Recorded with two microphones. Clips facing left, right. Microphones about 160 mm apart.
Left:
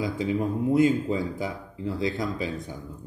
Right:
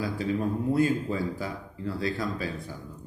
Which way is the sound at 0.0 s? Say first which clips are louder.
Left 2 dB; 20° left (ahead or behind).